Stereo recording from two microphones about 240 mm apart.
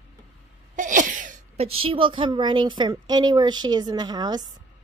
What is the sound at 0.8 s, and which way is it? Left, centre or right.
A woman's voice, right.